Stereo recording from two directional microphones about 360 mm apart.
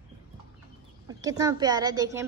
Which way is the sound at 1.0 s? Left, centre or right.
Centre.